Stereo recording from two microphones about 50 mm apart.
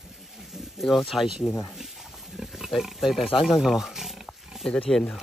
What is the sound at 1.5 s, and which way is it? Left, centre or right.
Speech, left.